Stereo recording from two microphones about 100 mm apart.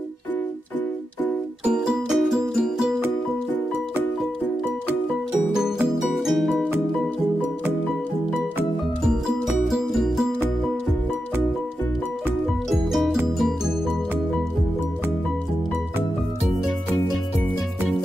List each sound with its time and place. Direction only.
1.7 s music: 5° right (ahead or behind)
5.5 s music: 5° right (ahead or behind)
9.7 s music: centre (ahead or behind)
12.6 s music: centre (ahead or behind)